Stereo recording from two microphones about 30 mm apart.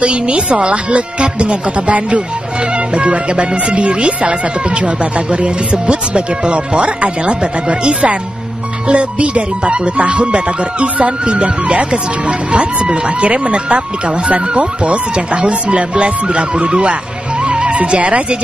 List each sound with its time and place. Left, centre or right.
0.0 s speech: right
8.9 s speech: right
17.5 s music: right
17.7 s speech: right